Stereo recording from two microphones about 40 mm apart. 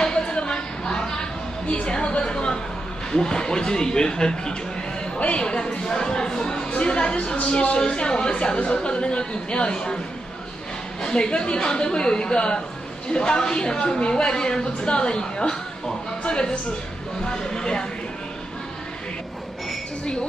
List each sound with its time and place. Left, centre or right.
0.0 s a sound: left
3.1 s a woman's voice: centre
11.0 s a woman's voice: left